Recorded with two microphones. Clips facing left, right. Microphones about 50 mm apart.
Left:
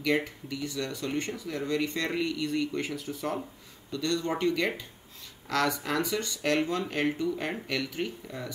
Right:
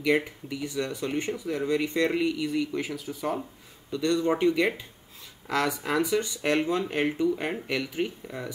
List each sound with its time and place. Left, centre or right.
0.0 s speech: centre
3.9 s speech: right